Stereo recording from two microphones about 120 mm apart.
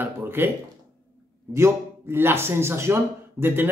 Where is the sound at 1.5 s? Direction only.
20° right (ahead or behind).